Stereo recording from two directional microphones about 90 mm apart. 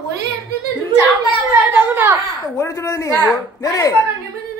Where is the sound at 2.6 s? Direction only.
35° left (ahead or behind).